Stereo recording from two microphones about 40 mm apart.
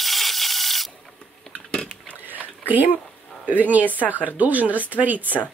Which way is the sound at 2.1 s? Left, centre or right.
Right.